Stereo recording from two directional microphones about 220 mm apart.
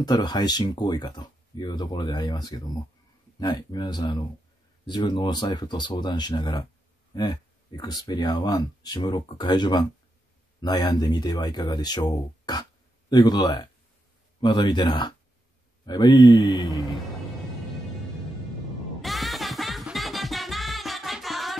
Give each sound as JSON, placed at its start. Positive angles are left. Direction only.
{"t": 0.0, "sound": "speech", "side_deg": 20}
{"t": 18.9, "sound": "music", "side_deg": 0}